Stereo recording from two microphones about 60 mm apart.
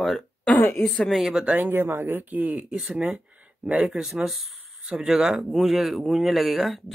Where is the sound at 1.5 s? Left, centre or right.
Right.